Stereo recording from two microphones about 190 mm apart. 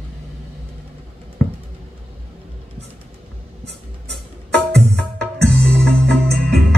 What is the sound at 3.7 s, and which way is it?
Music, 65° right (ahead or behind).